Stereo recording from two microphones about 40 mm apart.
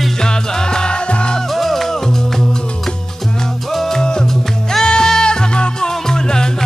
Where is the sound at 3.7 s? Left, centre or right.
Centre.